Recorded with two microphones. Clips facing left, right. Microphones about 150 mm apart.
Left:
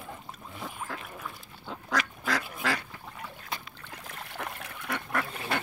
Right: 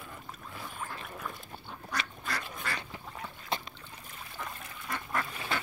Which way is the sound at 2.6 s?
90° left.